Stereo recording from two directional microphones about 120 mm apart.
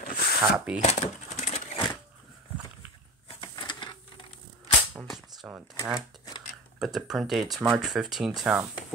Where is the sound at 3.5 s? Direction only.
35° left (ahead or behind).